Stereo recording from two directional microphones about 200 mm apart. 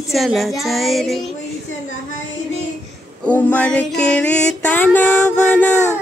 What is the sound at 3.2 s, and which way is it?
Music, 10° left (ahead or behind).